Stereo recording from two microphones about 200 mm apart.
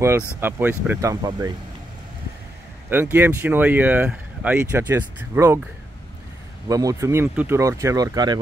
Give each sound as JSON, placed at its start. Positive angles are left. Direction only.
{"t": 0.4, "sound": "speech", "side_deg": -10}
{"t": 1.1, "sound": "speech", "side_deg": -20}
{"t": 2.9, "sound": "speech", "side_deg": -10}
{"t": 6.7, "sound": "speech", "side_deg": -15}